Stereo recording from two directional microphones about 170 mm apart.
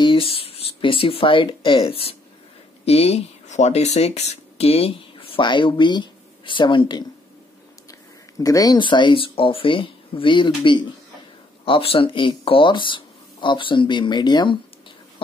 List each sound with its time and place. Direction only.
0.0 s speech: 30° left (ahead or behind)
8.4 s speech: 20° left (ahead or behind)